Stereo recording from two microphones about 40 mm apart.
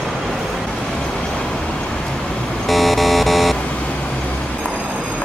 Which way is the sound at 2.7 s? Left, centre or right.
Centre.